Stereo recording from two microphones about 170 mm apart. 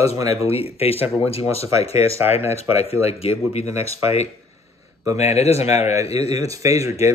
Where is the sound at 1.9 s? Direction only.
15° right (ahead or behind).